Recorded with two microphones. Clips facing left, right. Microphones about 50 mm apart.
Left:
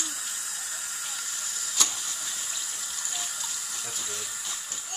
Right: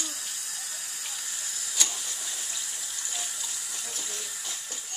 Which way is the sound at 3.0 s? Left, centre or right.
Centre.